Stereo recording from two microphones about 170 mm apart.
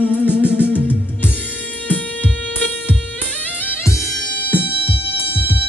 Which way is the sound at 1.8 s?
10° left (ahead or behind).